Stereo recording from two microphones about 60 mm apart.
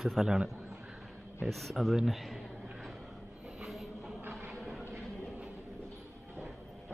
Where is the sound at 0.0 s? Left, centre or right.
Centre.